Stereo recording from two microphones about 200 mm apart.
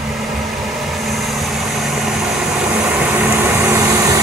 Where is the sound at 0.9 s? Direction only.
Centre (ahead or behind).